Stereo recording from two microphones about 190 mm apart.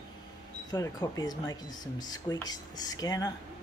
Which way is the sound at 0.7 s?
20° left (ahead or behind).